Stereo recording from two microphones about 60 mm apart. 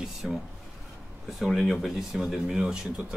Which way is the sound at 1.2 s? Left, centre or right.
Centre.